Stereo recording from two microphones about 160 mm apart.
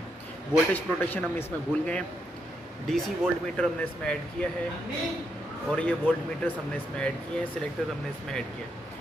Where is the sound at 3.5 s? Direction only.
5° left (ahead or behind).